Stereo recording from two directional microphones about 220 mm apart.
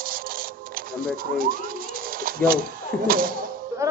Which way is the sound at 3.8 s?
15° right (ahead or behind).